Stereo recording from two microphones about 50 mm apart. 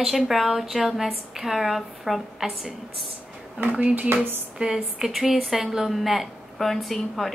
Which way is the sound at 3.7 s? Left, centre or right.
Right.